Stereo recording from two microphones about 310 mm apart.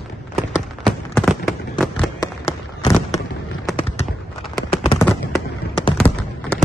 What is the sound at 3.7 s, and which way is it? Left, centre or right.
Clip-clop, centre.